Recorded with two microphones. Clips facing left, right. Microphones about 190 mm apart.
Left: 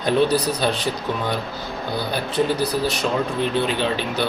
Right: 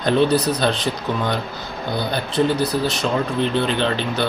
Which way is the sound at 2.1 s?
10° left (ahead or behind).